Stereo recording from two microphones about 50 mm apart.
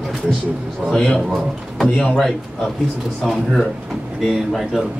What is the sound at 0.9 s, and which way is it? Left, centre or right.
Speech, centre.